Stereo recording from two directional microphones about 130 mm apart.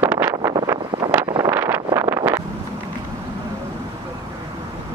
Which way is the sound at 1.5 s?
15° right (ahead or behind).